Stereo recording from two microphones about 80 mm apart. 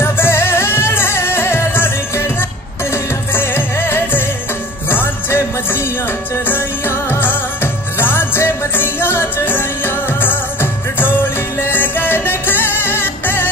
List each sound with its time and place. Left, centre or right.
0.0 s music: left